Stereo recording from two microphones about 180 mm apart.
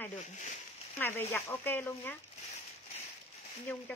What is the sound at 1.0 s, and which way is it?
Speech, 10° left (ahead or behind).